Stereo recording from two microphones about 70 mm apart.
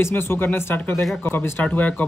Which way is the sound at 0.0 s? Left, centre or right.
Left.